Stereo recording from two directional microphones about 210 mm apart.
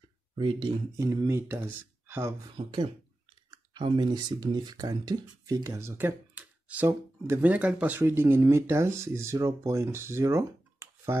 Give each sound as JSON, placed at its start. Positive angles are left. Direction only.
{"t": 0.4, "sound": "speech", "side_deg": -25}
{"t": 2.5, "sound": "speech", "side_deg": -25}